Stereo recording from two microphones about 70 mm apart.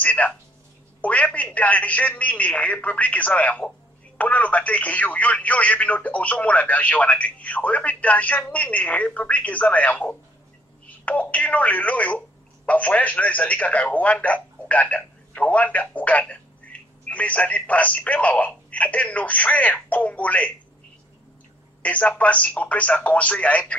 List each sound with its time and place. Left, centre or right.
0.0 s a man's voice: left
21.8 s a man's voice: left